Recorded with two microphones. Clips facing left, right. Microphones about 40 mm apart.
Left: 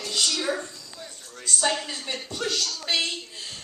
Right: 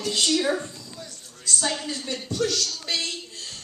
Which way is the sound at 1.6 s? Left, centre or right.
Centre.